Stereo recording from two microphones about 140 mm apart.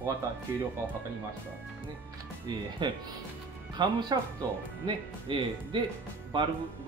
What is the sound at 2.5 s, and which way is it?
Speech, 35° right (ahead or behind).